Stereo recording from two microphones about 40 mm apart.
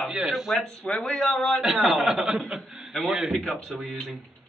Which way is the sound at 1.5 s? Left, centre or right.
Centre.